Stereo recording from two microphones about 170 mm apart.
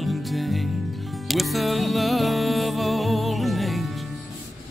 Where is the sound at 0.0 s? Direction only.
Centre (ahead or behind).